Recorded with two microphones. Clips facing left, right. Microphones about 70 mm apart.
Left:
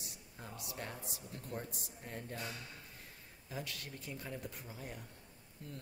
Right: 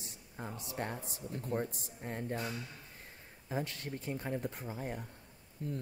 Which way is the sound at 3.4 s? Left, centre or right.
Right.